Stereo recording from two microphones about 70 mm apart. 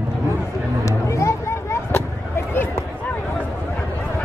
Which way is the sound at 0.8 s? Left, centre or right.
Left.